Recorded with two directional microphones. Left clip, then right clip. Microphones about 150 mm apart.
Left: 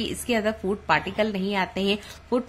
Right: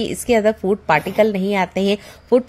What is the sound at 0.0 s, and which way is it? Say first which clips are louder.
A woman's voice: right 9 dB; 35° right (ahead or behind).